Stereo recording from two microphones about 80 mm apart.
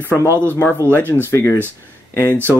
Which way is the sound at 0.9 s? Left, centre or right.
Left.